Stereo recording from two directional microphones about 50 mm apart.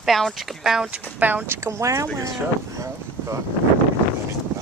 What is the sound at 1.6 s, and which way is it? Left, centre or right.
Speech, right.